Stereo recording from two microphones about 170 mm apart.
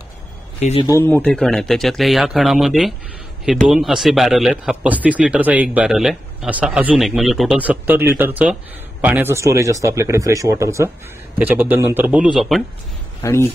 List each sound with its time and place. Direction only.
0.6 s speech: 40° left (ahead or behind)
0.8 s speech: 15° left (ahead or behind); by 12.6 s centre (ahead or behind)
13.2 s speech: 15° left (ahead or behind)